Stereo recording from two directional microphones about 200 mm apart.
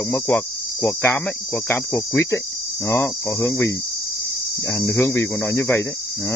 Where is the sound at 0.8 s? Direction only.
10° left (ahead or behind).